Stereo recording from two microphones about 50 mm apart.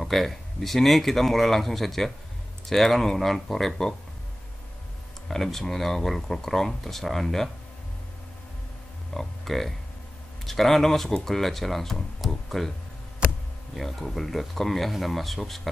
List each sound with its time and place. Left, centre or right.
0.0 s speech: centre
5.3 s speech: centre
9.1 s speech: centre
13.7 s speech: centre